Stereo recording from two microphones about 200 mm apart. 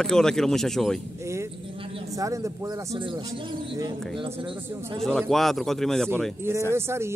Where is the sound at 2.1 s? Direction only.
15° right (ahead or behind).